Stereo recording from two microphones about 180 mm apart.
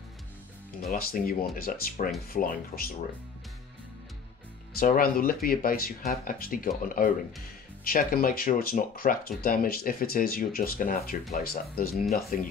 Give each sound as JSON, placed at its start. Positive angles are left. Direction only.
{"t": 0.9, "sound": "speech", "side_deg": 55}
{"t": 4.7, "sound": "speech", "side_deg": 50}
{"t": 7.8, "sound": "speech", "side_deg": 55}